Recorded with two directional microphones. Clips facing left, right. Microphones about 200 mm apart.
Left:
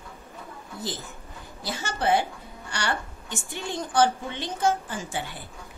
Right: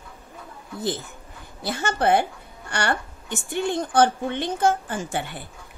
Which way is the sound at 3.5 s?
55° right (ahead or behind).